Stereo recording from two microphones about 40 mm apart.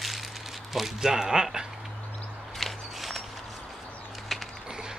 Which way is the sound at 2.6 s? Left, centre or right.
Centre.